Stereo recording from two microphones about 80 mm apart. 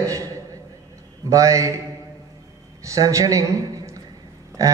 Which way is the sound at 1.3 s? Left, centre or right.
Right.